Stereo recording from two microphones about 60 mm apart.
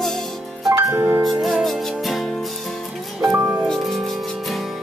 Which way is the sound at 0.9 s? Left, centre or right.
Right.